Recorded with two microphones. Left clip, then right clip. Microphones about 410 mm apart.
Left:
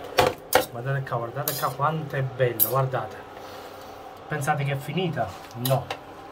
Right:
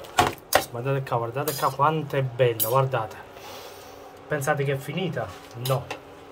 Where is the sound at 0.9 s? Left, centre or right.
Right.